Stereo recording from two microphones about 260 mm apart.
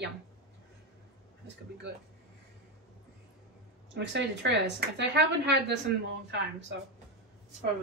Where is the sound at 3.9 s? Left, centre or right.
Right.